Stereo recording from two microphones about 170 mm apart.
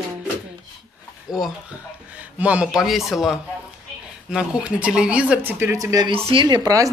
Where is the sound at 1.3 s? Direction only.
5° right (ahead or behind); by 6.1 s 20° right (ahead or behind).